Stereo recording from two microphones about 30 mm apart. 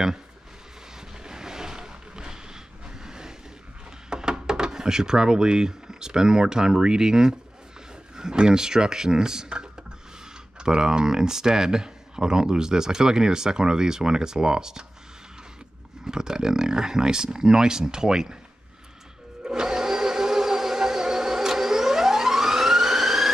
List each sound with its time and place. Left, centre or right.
1.2 s vehicle: right
4.1 s speech: right
10.6 s speech: right
16.1 s speech: right
19.4 s a sound: right